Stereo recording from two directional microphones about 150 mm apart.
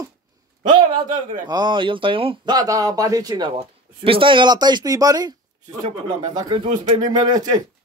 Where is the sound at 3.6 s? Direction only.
35° right (ahead or behind).